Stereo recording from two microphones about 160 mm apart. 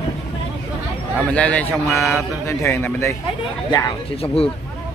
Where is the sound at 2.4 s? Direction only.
15° left (ahead or behind).